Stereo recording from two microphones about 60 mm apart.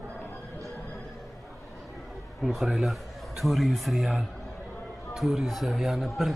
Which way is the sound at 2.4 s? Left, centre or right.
Centre.